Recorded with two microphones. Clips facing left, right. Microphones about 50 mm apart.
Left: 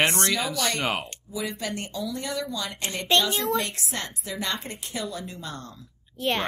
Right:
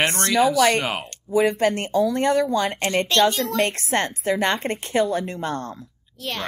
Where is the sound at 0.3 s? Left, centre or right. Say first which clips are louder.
Right 10 dB; centre.